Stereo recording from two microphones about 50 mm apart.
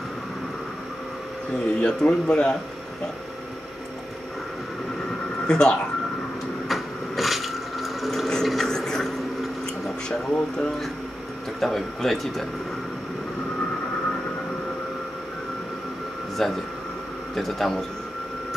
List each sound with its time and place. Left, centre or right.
1.5 s a man's voice: centre
5.5 s a man's voice: centre
6.7 s a sound: centre
8.6 s a sound: centre
10.0 s speech: centre
11.6 s speech: centre
16.4 s a man's voice: centre